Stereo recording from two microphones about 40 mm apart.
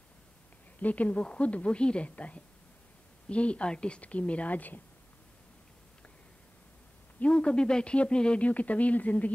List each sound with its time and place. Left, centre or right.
0.7 s a woman's voice: left
7.2 s speech: left
8.5 s a woman's voice: left